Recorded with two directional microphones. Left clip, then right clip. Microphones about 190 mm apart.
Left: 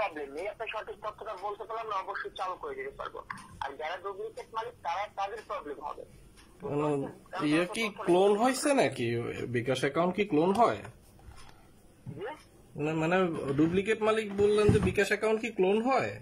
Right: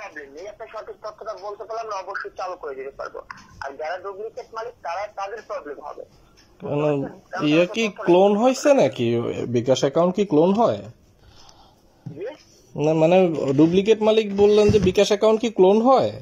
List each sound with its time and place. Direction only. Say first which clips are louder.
0.0 s speech: left 2 dB; 10° left (ahead or behind)
2.0 s speech: right 5 dB; 5° right (ahead or behind)
12.2 s a man's voice: right 7 dB; 25° right (ahead or behind)